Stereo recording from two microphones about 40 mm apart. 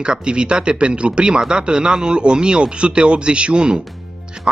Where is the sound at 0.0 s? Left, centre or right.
Right.